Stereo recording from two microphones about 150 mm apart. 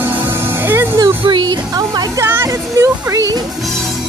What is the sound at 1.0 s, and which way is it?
Speech, 30° right (ahead or behind).